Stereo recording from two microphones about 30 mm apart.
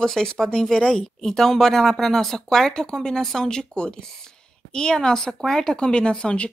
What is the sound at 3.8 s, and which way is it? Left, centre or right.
A woman's voice, left.